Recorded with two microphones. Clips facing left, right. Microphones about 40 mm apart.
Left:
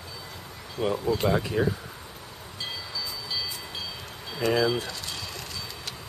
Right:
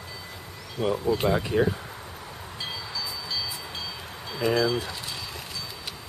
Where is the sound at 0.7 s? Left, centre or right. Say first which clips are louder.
Right 1 dB; centre.